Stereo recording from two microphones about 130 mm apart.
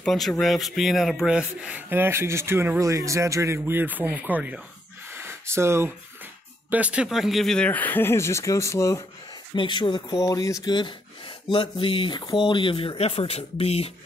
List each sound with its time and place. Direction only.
0.0 s a man's voice: 5° left (ahead or behind); by 4.6 s 10° right (ahead or behind)
5.1 s a sound: 20° right (ahead or behind)
6.7 s speech: 10° right (ahead or behind); by 9.0 s 25° left (ahead or behind)
9.6 s speech: 40° left (ahead or behind)